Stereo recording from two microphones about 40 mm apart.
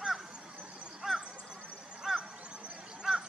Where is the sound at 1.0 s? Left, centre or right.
Centre.